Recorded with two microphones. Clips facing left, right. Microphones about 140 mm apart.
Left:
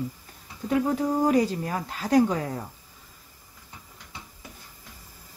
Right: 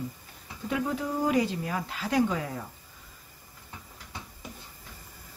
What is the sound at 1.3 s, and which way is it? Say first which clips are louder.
Speech: left 4 dB; 40° left (ahead or behind).